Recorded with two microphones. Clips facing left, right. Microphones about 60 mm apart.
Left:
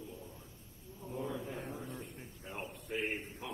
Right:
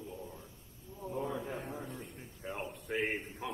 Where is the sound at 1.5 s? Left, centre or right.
Right.